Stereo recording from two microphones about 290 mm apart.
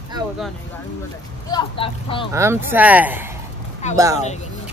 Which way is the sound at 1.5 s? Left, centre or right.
Centre.